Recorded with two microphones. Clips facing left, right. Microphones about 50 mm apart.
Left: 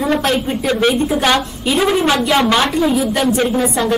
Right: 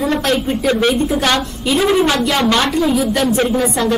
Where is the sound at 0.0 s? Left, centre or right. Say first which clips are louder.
Even; centre.